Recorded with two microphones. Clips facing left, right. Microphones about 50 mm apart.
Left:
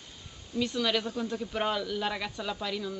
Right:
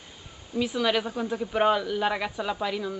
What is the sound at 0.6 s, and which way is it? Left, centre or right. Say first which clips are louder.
Speech: right 4 dB; centre.